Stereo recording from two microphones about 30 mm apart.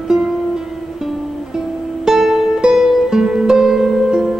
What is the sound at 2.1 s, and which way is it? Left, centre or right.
Music, centre.